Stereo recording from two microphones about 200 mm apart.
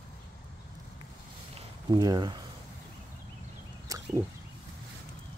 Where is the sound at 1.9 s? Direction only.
20° right (ahead or behind).